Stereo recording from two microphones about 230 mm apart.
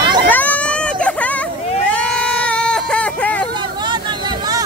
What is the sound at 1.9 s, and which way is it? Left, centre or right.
Baby cry, centre.